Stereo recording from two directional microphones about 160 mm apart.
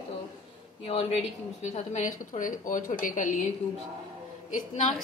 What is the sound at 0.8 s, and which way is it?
A woman's voice, 40° left (ahead or behind).